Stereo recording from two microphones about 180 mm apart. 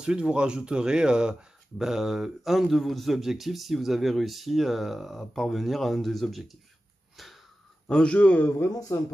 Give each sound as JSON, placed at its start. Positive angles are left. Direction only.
{"t": 0.0, "sound": "a man's voice", "side_deg": -5}
{"t": 7.2, "sound": "sniff", "side_deg": 0}
{"t": 7.9, "sound": "a man's voice", "side_deg": 5}